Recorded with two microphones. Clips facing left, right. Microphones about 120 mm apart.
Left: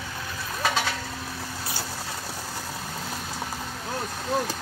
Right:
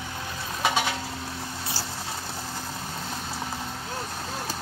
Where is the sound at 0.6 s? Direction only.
15° right (ahead or behind).